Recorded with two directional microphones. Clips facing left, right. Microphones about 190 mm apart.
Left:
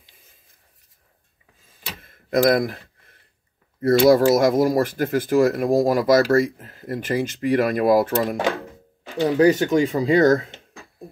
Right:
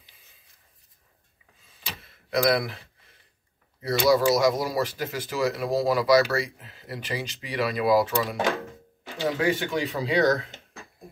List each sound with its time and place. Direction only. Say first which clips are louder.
2.0 s tick-tock: left 6 dB; 50° left (ahead or behind)
3.8 s speech: left 7 dB; 50° left (ahead or behind)
9.4 s speech: left 11 dB; 40° left (ahead or behind)